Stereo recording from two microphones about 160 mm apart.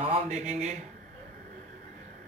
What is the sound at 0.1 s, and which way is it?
Speech, 45° right (ahead or behind).